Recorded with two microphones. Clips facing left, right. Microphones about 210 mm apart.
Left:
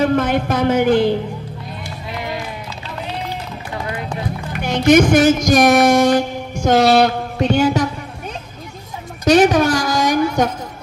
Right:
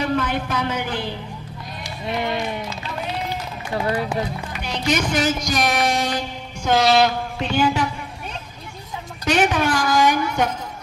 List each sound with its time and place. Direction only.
0.0 s speech: 45° left (ahead or behind)
4.5 s music: 50° left (ahead or behind)
9.2 s a sound: 40° left (ahead or behind)